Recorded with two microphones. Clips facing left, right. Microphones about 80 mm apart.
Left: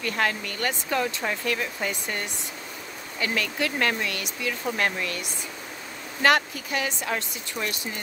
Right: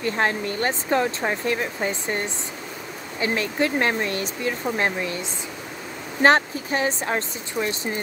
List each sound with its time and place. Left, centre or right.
0.0 s speech: right
7.6 s speech: centre